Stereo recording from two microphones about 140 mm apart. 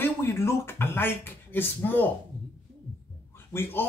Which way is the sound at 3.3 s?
15° left (ahead or behind).